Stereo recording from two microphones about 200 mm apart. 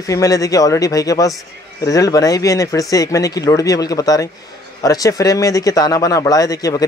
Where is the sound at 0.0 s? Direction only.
15° left (ahead or behind).